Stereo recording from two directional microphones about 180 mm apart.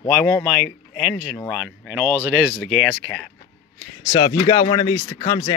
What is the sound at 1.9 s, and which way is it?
Speech, 15° right (ahead or behind).